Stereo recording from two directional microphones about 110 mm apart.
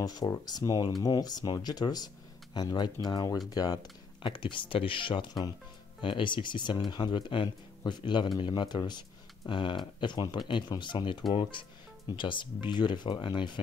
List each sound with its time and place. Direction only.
0.0 s speech: 35° left (ahead or behind)